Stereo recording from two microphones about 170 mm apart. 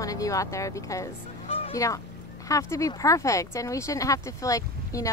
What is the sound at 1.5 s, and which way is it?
Music, 35° left (ahead or behind).